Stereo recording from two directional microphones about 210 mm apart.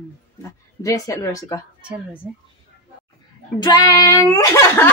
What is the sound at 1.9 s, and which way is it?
Speech, 5° right (ahead or behind).